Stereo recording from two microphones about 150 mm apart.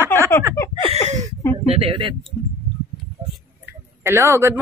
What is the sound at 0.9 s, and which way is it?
Speech, 50° right (ahead or behind).